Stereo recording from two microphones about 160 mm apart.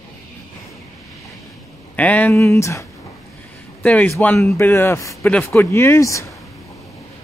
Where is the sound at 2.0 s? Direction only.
10° left (ahead or behind).